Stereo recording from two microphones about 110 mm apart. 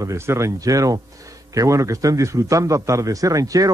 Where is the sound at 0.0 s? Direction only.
25° right (ahead or behind).